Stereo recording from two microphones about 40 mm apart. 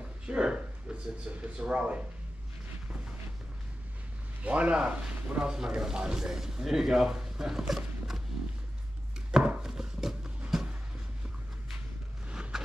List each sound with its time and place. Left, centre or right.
0.4 s speech: right
1.4 s speech: right
4.4 s speech: right
5.4 s speech: centre
9.6 s a sound: centre
12.3 s a sound: right